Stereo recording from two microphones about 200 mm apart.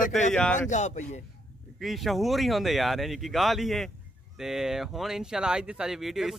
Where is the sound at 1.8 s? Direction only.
Centre (ahead or behind).